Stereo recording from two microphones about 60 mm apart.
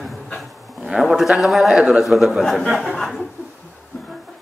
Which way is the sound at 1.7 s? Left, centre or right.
Centre.